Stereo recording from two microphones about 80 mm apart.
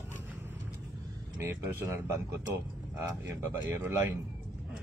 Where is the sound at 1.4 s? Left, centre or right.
Right.